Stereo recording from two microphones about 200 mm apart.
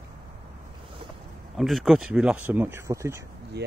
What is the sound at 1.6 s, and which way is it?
Speech, centre (ahead or behind).